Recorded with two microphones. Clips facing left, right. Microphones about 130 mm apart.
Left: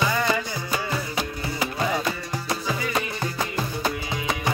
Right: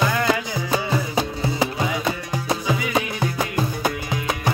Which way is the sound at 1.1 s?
25° right (ahead or behind).